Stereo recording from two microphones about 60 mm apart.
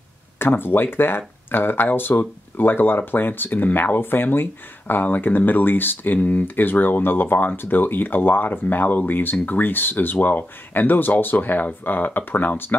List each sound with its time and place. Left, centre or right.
0.4 s speech: left